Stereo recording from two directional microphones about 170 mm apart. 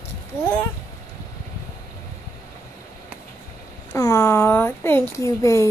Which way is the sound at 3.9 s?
20° left (ahead or behind).